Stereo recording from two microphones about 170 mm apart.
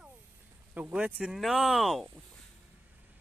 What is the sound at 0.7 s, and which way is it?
Speech, 10° right (ahead or behind).